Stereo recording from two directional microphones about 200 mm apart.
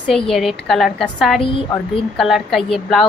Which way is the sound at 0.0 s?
Centre (ahead or behind).